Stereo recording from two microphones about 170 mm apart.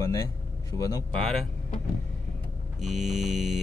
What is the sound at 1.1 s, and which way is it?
Speech, 5° left (ahead or behind).